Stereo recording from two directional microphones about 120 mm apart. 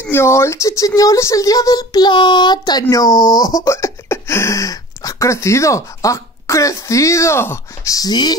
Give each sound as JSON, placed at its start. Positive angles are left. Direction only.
{"t": 0.1, "sound": "speech", "side_deg": 20}